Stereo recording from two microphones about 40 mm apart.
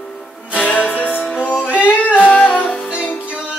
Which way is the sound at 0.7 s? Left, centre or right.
Left.